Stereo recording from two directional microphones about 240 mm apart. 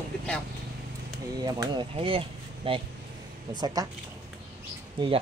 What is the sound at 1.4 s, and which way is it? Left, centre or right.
Speech, centre.